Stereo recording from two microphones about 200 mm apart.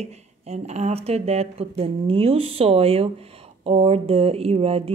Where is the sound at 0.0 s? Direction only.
30° right (ahead or behind).